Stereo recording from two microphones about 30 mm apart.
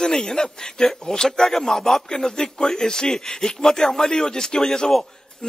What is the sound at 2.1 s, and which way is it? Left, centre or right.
A man's voice, left.